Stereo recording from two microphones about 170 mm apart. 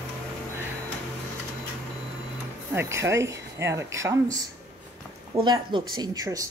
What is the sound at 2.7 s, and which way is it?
Speech, 15° right (ahead or behind).